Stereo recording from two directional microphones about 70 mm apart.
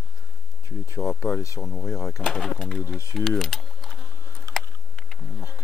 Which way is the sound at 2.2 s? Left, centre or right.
Centre.